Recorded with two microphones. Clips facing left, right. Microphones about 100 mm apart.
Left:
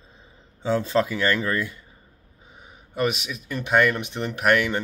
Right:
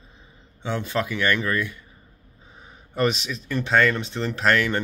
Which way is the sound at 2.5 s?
10° left (ahead or behind).